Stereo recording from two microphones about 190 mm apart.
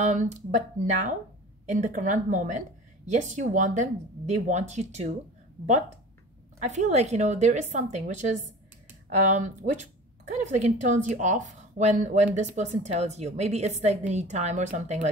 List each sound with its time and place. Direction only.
0.0 s speech: 40° right (ahead or behind)
1.7 s speech: 40° right (ahead or behind)
6.6 s speech: 40° right (ahead or behind)